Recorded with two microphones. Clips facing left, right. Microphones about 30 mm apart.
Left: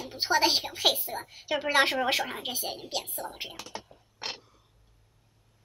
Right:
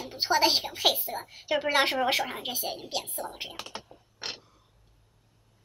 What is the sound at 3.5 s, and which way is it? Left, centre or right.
Speech, right.